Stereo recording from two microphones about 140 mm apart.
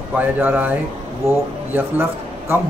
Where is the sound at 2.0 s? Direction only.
15° right (ahead or behind).